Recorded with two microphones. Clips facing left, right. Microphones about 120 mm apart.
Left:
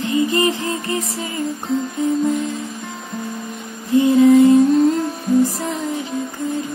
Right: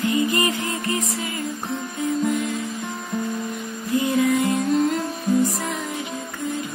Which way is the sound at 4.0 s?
30° left (ahead or behind).